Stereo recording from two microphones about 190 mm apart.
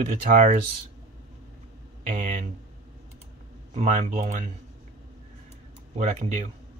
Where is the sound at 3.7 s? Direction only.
35° right (ahead or behind).